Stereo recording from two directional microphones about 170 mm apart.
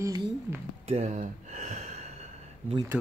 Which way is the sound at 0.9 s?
40° right (ahead or behind).